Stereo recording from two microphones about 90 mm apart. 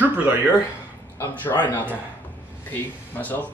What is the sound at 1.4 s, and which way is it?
A man's voice, 20° left (ahead or behind).